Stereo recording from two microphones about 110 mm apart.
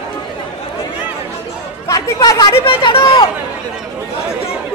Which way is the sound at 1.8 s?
30° left (ahead or behind).